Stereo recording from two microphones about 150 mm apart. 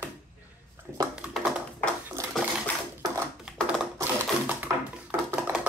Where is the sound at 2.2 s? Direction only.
15° right (ahead or behind).